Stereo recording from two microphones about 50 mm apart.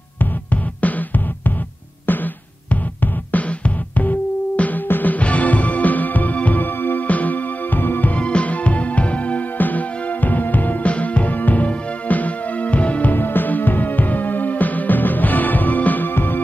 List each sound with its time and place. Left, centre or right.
0.2 s music: left
8.2 s music: left
13.1 s music: left